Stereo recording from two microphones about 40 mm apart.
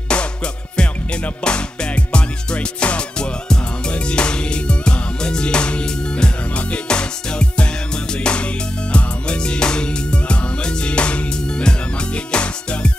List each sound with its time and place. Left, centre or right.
0.1 s music: left
1.4 s music: left